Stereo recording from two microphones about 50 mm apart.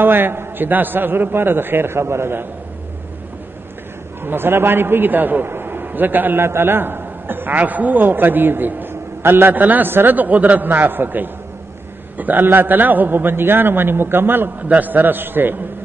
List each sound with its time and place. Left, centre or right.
0.0 s a man's voice: right
4.2 s a man's voice: right
6.4 s a man's voice: right
14.7 s a man's voice: right